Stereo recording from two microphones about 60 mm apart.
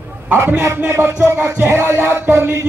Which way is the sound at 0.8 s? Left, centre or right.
Right.